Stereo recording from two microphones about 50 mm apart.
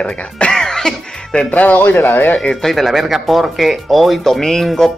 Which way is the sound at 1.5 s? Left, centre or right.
Left.